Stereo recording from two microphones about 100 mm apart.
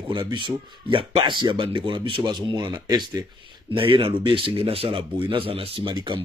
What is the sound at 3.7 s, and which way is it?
Speech, 60° right (ahead or behind).